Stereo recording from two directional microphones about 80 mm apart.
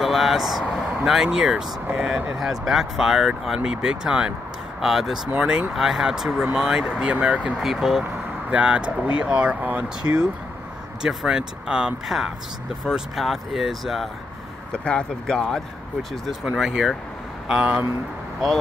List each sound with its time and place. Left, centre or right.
0.0 s speech: centre
7.5 s speech: centre
8.0 s speech: centre
14.7 s speech: centre
16.3 s speech: centre